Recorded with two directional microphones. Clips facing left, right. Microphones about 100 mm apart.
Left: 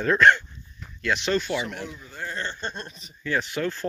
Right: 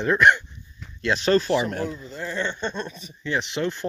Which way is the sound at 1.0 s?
35° right (ahead or behind).